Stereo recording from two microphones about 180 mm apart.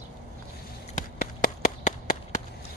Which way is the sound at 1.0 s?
45° left (ahead or behind).